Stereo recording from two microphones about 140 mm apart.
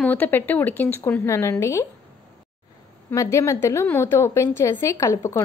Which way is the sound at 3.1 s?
20° left (ahead or behind).